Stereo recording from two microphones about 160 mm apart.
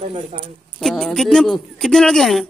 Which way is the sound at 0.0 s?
35° right (ahead or behind).